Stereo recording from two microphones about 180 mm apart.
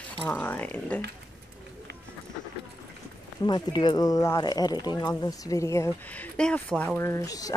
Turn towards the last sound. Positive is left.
turn(degrees=20)  # may be behind; listen again after turning